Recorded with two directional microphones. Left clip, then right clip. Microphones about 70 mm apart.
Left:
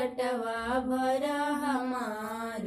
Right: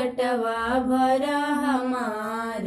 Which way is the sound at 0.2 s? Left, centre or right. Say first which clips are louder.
Right 7 dB; left.